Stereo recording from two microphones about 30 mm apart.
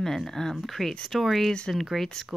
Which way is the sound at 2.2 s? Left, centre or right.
Centre.